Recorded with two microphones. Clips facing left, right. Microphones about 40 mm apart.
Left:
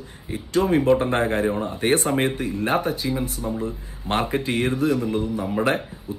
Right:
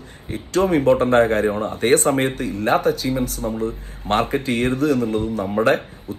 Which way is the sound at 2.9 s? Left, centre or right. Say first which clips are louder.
Right 6 dB; left.